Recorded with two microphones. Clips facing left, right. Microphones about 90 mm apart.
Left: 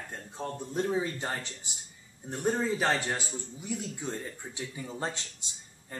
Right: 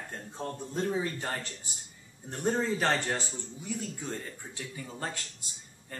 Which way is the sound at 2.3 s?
5° left (ahead or behind).